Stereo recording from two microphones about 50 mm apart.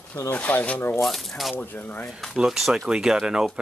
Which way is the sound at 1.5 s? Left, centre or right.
Left.